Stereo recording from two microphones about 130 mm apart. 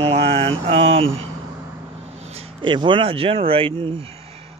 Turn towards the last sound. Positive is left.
turn(degrees=-45)  # may be behind; listen again after turning